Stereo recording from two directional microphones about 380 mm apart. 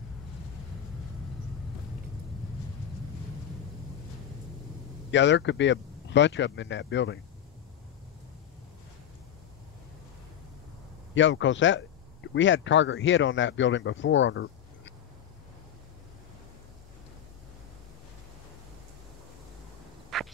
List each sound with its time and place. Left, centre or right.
5.1 s speech: left
11.1 s speech: left
20.1 s frog: centre